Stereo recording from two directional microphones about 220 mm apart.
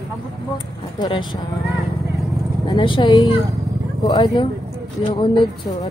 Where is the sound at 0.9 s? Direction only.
20° left (ahead or behind).